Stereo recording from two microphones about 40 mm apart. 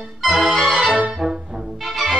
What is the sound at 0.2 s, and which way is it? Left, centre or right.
Music, centre.